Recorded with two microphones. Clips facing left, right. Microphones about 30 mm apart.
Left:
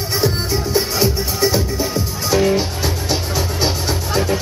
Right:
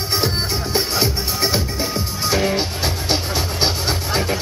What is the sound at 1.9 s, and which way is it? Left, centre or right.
Music, centre.